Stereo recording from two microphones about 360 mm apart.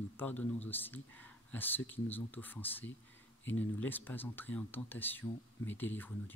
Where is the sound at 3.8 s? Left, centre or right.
Centre.